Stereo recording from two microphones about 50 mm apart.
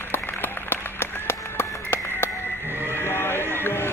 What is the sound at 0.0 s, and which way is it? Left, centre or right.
Applause, left.